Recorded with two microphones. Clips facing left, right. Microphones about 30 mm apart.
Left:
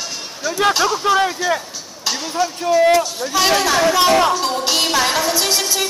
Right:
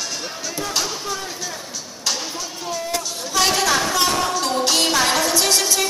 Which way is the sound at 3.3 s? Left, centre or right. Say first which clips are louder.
Left 2 dB; centre.